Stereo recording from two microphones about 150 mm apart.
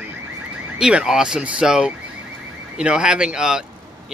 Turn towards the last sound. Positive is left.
turn(degrees=-5)  # may be behind; listen again after turning